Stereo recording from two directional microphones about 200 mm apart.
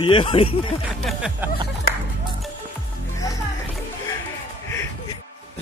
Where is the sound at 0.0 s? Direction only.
25° left (ahead or behind).